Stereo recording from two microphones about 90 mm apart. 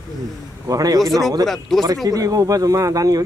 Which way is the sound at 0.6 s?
40° right (ahead or behind).